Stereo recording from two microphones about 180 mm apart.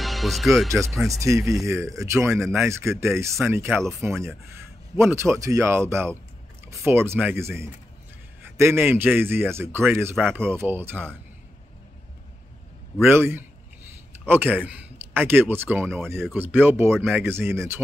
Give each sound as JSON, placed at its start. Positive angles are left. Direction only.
{"t": 0.0, "sound": "speech", "side_deg": 0}
{"t": 1.7, "sound": "speech", "side_deg": -15}
{"t": 13.1, "sound": "speech", "side_deg": -15}